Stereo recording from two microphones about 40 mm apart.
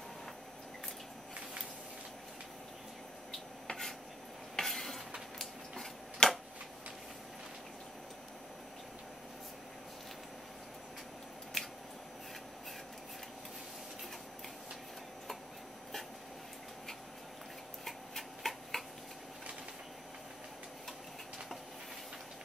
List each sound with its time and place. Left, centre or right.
3.3 s rub: centre
4.6 s stir: centre
6.2 s a sound: centre
11.6 s scissors: centre
17.8 s tick-tock: centre